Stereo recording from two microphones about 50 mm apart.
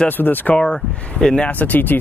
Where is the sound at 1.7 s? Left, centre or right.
Left.